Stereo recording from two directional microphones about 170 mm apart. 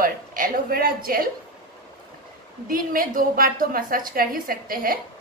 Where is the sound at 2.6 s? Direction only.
55° right (ahead or behind).